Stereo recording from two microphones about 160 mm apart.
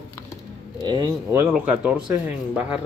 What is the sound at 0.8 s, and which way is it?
Speech, 25° right (ahead or behind).